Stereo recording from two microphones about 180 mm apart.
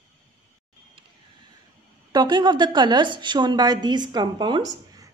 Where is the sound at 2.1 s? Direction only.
25° right (ahead or behind).